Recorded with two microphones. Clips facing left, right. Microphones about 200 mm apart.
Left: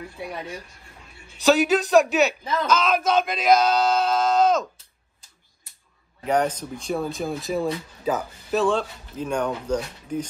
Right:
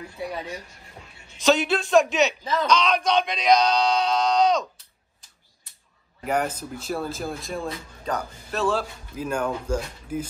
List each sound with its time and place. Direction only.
1.4 s speech: centre (ahead or behind)
6.2 s speech: 5° right (ahead or behind)